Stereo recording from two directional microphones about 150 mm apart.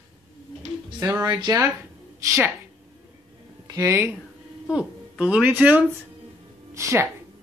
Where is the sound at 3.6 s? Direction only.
20° right (ahead or behind).